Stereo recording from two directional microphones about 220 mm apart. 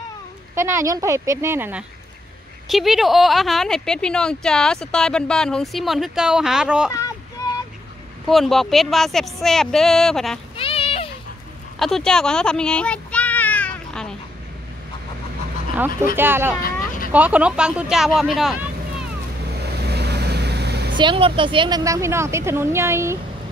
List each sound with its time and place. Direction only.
0.6 s a woman's voice: 10° right (ahead or behind)
8.3 s speech: centre (ahead or behind)
10.6 s a sound: 25° left (ahead or behind)
11.8 s a sound: 5° left (ahead or behind)
16.2 s a woman's voice: 10° right (ahead or behind)
19.5 s vehicle: 50° right (ahead or behind)
20.9 s a woman's voice: 20° right (ahead or behind)